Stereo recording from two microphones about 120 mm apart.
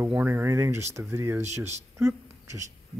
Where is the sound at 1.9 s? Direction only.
25° right (ahead or behind).